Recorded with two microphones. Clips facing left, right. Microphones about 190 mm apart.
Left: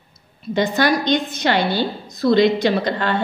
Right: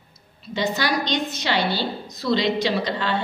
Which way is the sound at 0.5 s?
55° left (ahead or behind).